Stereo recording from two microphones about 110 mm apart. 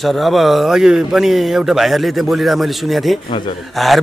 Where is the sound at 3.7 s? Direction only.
Centre (ahead or behind).